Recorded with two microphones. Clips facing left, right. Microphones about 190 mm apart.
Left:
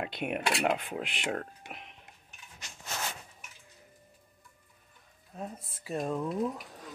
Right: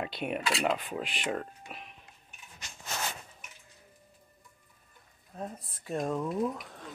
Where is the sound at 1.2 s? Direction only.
20° left (ahead or behind).